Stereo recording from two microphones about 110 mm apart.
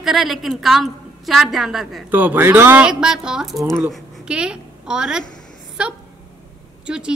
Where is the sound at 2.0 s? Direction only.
15° right (ahead or behind).